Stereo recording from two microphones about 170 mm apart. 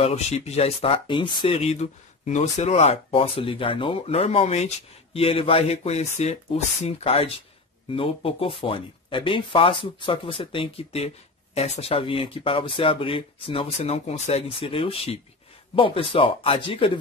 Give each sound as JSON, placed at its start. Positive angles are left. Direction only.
{"t": 0.0, "sound": "speech", "side_deg": 40}